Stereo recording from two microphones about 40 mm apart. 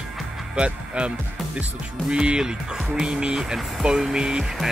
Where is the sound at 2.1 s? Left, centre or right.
Right.